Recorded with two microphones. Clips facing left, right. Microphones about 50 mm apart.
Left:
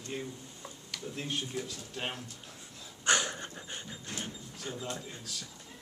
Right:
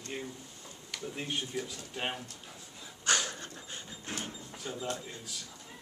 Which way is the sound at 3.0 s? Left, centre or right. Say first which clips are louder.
Left 2 dB; left.